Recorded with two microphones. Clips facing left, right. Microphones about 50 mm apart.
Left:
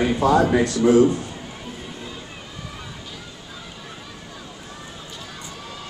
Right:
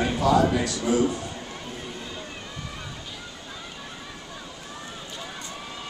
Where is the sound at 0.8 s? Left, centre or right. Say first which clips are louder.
Left 10 dB; centre.